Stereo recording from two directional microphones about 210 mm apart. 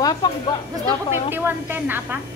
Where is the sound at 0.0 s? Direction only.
20° left (ahead or behind).